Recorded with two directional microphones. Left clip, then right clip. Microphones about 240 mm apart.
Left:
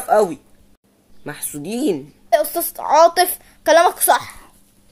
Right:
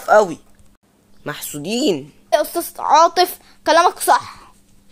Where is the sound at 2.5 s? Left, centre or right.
Centre.